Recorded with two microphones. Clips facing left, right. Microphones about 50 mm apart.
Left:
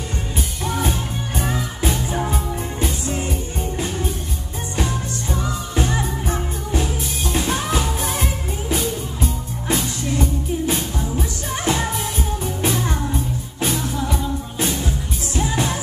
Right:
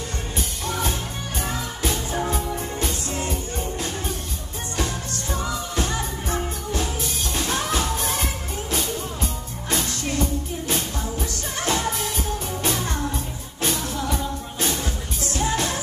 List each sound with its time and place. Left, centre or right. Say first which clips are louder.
1.4 s music: left 3 dB; centre
5.8 s music: left 7 dB; centre
9.7 s music: left 3 dB; centre